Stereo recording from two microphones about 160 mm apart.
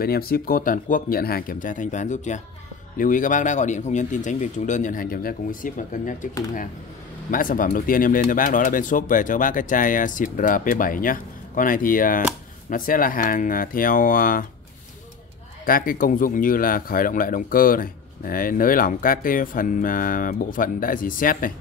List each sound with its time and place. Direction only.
0.0 s speech: 70° left (ahead or behind); by 6.1 s 55° left (ahead or behind)
7.2 s speech: 60° left (ahead or behind)
15.6 s speech: 60° left (ahead or behind)